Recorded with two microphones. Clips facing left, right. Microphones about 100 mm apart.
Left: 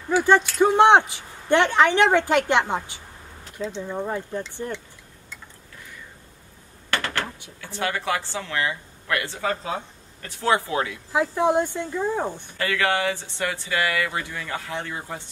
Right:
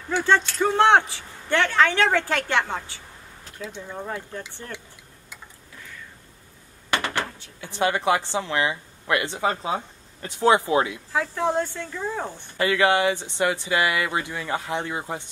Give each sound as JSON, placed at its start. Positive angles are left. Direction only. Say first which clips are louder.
{"t": 0.1, "sound": "speech", "louder": "left 3 dB", "side_deg": 15}
{"t": 6.9, "sound": "a sound", "louder": "right 1 dB", "side_deg": -15}
{"t": 7.2, "sound": "drawer open or close", "louder": "left 3 dB", "side_deg": 15}
{"t": 7.6, "sound": "speech", "louder": "right 4 dB", "side_deg": -20}
{"t": 11.1, "sound": "speech", "louder": "left 3 dB", "side_deg": 15}
{"t": 12.5, "sound": "speech", "louder": "right 4 dB", "side_deg": -20}